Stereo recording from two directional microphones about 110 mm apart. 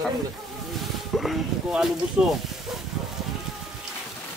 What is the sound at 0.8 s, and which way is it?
Speech, centre (ahead or behind).